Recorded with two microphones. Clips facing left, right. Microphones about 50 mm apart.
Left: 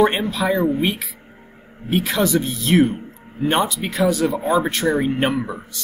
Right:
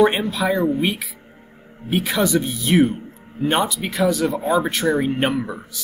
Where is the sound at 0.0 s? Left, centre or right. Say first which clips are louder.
Even; centre.